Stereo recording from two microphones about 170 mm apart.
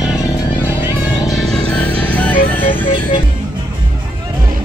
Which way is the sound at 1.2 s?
Centre (ahead or behind).